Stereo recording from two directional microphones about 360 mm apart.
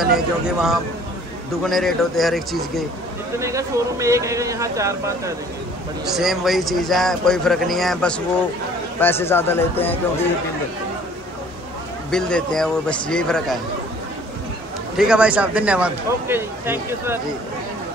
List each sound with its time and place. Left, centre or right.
0.0 s a man's voice: centre
12.1 s a man's voice: centre
15.0 s a man's voice: centre